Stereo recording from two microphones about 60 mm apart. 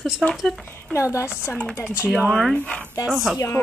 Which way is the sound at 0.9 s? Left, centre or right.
Left.